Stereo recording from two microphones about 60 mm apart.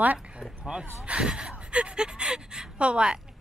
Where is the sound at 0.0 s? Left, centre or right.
Right.